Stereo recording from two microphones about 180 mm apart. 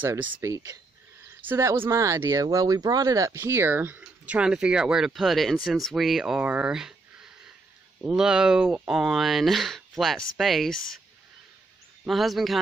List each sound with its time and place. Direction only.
0.0 s speech: 10° right (ahead or behind)
12.0 s speech: centre (ahead or behind)